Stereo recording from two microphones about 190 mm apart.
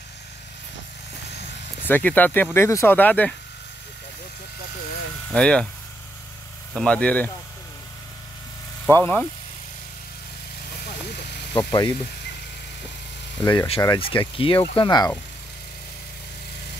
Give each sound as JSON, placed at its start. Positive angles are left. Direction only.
{"t": 1.9, "sound": "speech", "side_deg": 10}
{"t": 5.3, "sound": "speech", "side_deg": 5}
{"t": 6.7, "sound": "speech", "side_deg": 5}
{"t": 8.8, "sound": "speech", "side_deg": 10}
{"t": 11.5, "sound": "speech", "side_deg": 25}
{"t": 13.4, "sound": "speech", "side_deg": 20}